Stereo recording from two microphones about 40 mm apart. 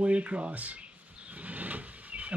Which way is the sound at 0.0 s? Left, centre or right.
Right.